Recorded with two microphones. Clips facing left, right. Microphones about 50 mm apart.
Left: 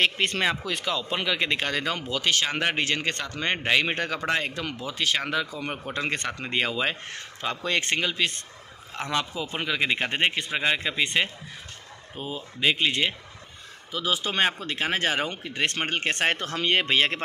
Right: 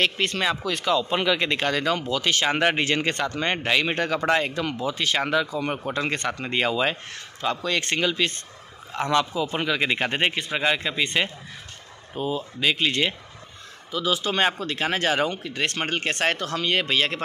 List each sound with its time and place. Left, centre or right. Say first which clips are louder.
0.0 s speech: even; left
0.7 s speech: right 5 dB; centre
2.4 s speech: right 4 dB; centre
3.4 s speech: left 1 dB; centre
7.4 s speech: right 2 dB; left
8.0 s speech: right 3 dB; centre
9.2 s speech: right 6 dB; centre
9.5 s speech: right 2 dB; centre; by 17.2 s left